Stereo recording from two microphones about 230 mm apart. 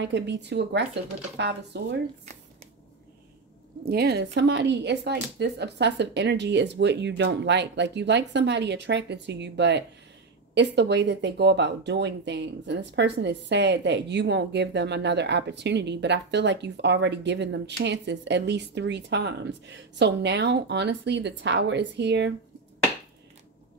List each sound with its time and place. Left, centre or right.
0.0 s speech: right
3.8 s speech: right